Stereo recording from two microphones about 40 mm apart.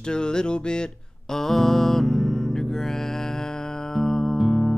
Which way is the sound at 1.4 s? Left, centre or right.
Centre.